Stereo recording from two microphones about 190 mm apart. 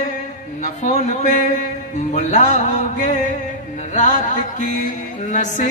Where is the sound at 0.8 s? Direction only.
40° left (ahead or behind).